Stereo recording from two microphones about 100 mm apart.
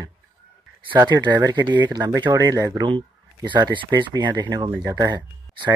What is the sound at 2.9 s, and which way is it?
Speech, 50° right (ahead or behind).